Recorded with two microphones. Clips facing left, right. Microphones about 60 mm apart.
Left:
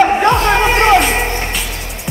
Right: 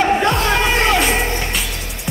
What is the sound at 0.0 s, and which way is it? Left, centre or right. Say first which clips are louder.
Music: left 4 dB; left.